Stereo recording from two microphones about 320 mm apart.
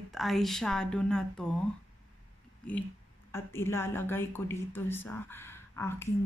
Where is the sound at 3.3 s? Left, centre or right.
Centre.